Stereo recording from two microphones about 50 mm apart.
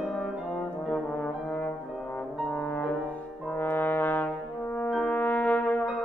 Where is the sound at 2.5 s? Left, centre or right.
Left.